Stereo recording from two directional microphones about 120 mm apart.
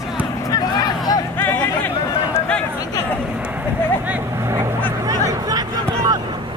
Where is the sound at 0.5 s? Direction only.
35° left (ahead or behind).